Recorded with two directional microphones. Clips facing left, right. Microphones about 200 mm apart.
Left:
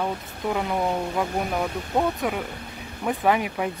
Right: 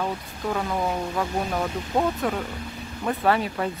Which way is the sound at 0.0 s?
15° left (ahead or behind).